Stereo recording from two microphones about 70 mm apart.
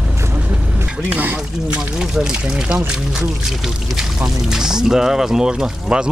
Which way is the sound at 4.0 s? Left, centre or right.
Centre.